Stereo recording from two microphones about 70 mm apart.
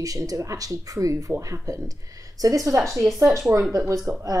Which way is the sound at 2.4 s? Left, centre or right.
Right.